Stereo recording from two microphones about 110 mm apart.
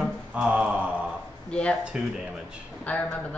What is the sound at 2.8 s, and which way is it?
Speech, 10° left (ahead or behind).